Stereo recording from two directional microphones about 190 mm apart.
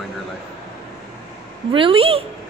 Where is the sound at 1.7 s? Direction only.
30° right (ahead or behind).